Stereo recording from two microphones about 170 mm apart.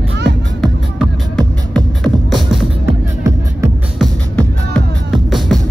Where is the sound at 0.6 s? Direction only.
5° left (ahead or behind).